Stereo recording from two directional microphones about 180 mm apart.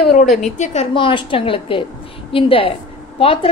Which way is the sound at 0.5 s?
40° left (ahead or behind).